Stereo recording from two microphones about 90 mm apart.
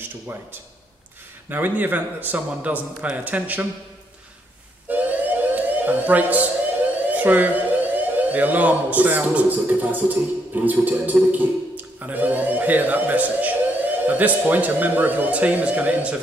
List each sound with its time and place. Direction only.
0.0 s a man's voice: 20° right (ahead or behind)
4.8 s siren: 20° right (ahead or behind)
7.1 s speech: 20° right (ahead or behind)